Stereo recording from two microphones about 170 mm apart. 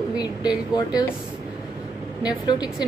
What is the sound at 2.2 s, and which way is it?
Speech, 25° left (ahead or behind).